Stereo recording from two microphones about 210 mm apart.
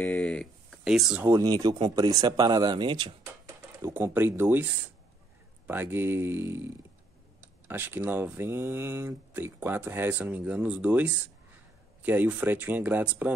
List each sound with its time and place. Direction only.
0.1 s speech: 5° left (ahead or behind)
1.2 s speech: 15° right (ahead or behind)
5.7 s speech: 10° right (ahead or behind)